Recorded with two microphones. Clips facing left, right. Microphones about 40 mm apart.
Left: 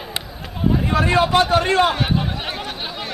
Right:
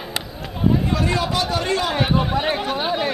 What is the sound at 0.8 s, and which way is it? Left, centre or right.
A man's voice, left.